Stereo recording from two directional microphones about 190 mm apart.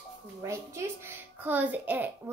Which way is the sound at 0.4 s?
15° right (ahead or behind).